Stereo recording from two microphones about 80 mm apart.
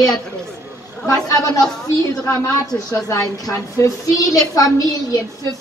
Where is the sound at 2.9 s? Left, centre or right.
Left.